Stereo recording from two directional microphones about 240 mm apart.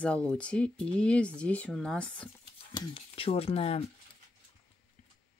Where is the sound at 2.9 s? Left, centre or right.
Left.